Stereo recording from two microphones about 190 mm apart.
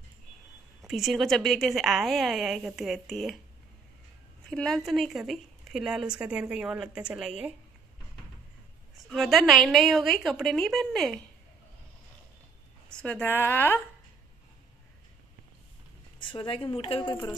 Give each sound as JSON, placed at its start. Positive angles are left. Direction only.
{"t": 0.8, "sound": "speech", "side_deg": 0}
{"t": 4.5, "sound": "speech", "side_deg": 5}
{"t": 9.1, "sound": "speech", "side_deg": 0}
{"t": 12.9, "sound": "a woman's voice", "side_deg": 5}
{"t": 16.2, "sound": "a woman's voice", "side_deg": 25}